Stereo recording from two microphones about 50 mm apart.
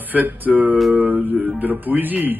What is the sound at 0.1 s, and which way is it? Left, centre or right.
Speech, right.